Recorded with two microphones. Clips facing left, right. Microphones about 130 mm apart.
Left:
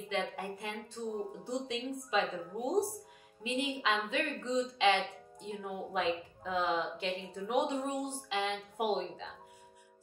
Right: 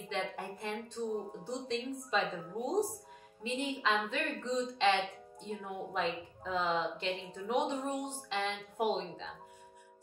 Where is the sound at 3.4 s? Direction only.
5° left (ahead or behind).